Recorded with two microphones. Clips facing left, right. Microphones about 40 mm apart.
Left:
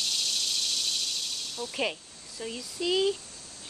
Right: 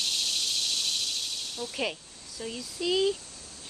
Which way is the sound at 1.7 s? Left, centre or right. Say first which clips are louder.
Left 2 dB; centre.